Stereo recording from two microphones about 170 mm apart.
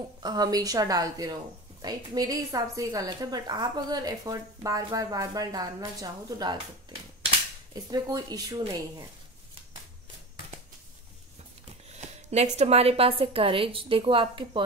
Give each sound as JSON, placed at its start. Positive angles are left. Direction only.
{"t": 0.2, "sound": "a woman's voice", "side_deg": -25}
{"t": 12.3, "sound": "a woman's voice", "side_deg": -40}